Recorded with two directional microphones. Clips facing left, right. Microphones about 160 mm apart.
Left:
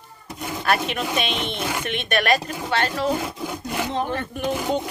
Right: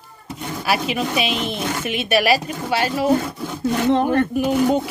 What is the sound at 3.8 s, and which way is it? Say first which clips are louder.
Speech: right 11 dB; 55° right (ahead or behind).